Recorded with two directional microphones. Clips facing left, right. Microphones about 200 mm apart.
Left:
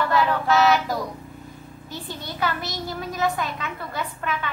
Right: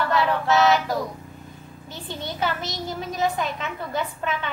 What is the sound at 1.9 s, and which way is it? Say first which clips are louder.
A child's voice: right 2 dB; 20° right (ahead or behind).